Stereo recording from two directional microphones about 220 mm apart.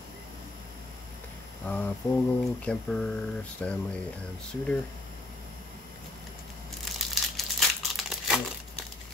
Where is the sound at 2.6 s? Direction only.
5° left (ahead or behind).